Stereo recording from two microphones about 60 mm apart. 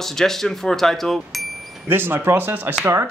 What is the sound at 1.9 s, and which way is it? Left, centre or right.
Speech, right.